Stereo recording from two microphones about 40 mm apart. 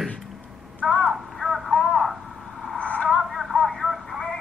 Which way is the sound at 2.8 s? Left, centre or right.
Left.